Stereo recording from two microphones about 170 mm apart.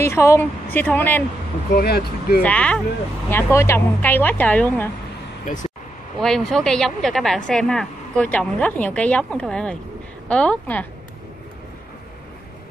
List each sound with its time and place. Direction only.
0.0 s speech: 15° left (ahead or behind)
1.8 s speech: 65° left (ahead or behind)
2.4 s speech: 5° left (ahead or behind)
5.4 s speech: 45° left (ahead or behind)
6.2 s a woman's voice: centre (ahead or behind)